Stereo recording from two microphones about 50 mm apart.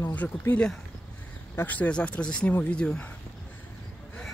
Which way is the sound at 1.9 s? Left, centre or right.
Centre.